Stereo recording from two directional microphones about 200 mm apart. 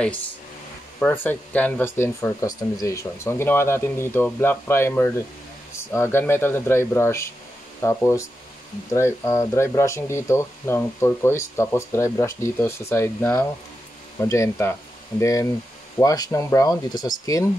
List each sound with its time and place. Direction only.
0.9 s speech: 10° left (ahead or behind)